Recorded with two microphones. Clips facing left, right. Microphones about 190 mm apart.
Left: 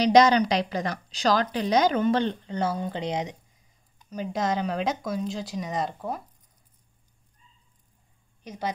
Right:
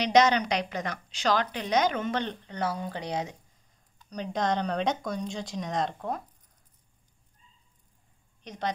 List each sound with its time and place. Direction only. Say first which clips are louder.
0.0 s a woman's voice: left 4 dB; 35° left (ahead or behind); by 3.3 s 20° left (ahead or behind)
4.1 s speech: left 1 dB; 5° left (ahead or behind)
8.5 s a woman's voice: left 1 dB; 5° left (ahead or behind)